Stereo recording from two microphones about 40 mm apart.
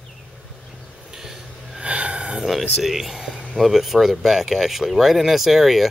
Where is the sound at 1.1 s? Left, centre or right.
Centre.